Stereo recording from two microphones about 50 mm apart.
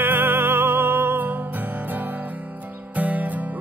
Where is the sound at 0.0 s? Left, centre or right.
Right.